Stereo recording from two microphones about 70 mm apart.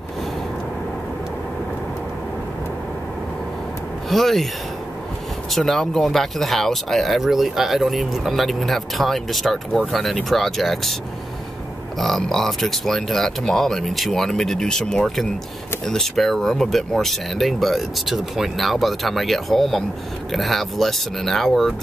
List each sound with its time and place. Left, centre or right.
4.1 s speech: centre
5.5 s speech: centre
12.0 s speech: centre